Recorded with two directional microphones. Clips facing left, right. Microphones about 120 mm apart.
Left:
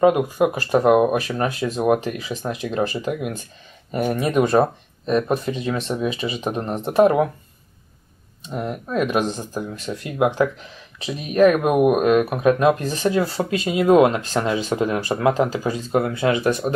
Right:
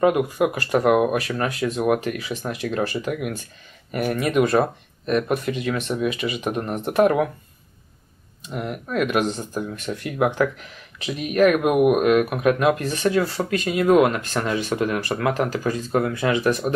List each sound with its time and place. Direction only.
0.0 s speech: 25° left (ahead or behind)
8.5 s speech: 20° left (ahead or behind)
9.4 s speech: 5° left (ahead or behind)
9.8 s speech: 20° left (ahead or behind)
11.1 s speech: 30° left (ahead or behind)